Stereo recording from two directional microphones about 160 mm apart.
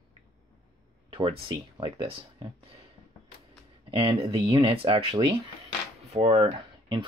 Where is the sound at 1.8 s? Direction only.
35° right (ahead or behind).